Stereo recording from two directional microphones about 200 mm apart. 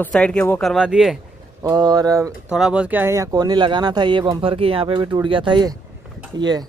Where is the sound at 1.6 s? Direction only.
20° right (ahead or behind).